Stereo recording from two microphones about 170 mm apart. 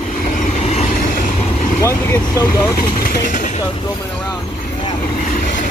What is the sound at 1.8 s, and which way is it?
Vehicle, 20° left (ahead or behind).